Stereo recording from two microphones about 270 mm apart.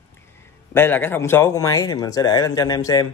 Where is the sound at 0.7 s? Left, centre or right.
Centre.